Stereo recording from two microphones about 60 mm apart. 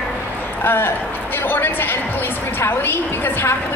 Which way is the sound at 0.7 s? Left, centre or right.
Left.